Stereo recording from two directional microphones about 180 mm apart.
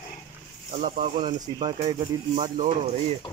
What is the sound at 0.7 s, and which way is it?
Speech, 45° right (ahead or behind).